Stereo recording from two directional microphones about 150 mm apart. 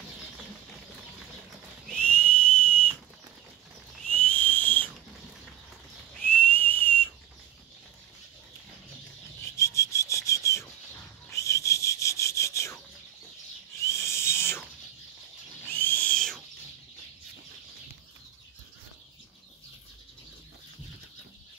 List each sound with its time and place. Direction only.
1.9 s whistle: 10° left (ahead or behind)
4.0 s whistle: 10° left (ahead or behind)
6.1 s whistle: 10° left (ahead or behind)
9.4 s rub: 20° left (ahead or behind)
11.3 s whistle: 20° left (ahead or behind)
13.8 s owl: 20° left (ahead or behind)
15.7 s owl: 10° left (ahead or behind)